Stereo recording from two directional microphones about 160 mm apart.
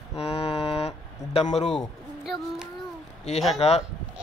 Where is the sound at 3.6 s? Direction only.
40° left (ahead or behind).